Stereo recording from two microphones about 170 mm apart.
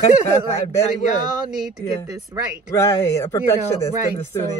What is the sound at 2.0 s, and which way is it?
Speech, 20° right (ahead or behind).